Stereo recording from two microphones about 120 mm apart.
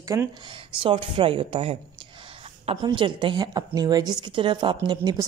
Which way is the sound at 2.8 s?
45° right (ahead or behind).